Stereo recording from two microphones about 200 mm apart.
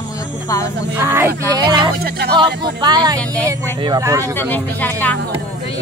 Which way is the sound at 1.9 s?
50° right (ahead or behind).